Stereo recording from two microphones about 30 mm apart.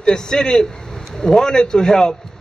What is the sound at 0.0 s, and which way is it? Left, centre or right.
A man's voice, left.